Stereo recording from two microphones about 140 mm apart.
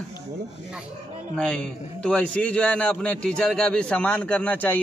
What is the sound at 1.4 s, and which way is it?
A man's voice, 5° left (ahead or behind).